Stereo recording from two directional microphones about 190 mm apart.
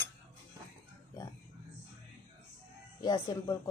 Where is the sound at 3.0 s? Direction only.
20° left (ahead or behind).